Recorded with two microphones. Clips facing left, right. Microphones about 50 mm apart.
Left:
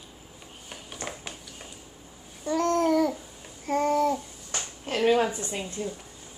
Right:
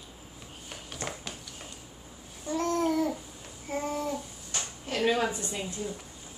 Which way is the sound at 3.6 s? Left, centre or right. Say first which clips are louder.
Left 9 dB; left.